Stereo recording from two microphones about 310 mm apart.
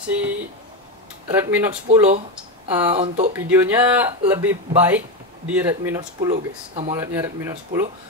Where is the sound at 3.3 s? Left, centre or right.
Centre.